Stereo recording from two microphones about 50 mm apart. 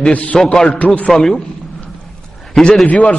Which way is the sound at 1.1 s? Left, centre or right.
Centre.